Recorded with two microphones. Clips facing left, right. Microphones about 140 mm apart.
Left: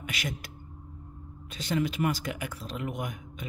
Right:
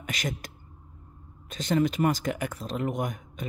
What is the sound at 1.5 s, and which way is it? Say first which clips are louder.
A man's voice: right 4 dB; 45° right (ahead or behind).